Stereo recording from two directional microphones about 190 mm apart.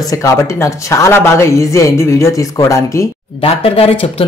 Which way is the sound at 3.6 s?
30° left (ahead or behind).